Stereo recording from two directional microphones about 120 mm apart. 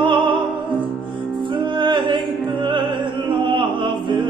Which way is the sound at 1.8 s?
45° right (ahead or behind).